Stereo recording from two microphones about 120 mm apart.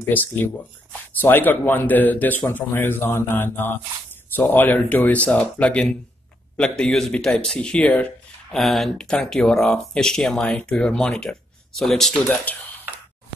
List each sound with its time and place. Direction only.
0.0 s a man's voice: 15° left (ahead or behind)